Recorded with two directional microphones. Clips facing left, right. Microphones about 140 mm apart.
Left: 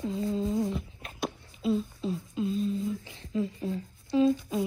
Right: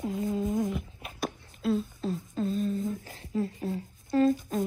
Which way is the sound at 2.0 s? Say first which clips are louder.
Even; 45° right (ahead or behind).